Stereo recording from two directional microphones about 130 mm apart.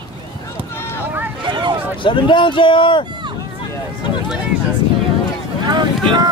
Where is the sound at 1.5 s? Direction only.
35° right (ahead or behind).